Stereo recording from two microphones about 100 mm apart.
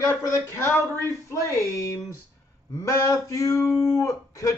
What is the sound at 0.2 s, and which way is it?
Speech, 30° left (ahead or behind).